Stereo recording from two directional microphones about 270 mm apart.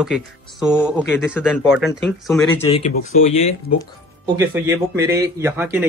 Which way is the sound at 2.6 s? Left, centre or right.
Left.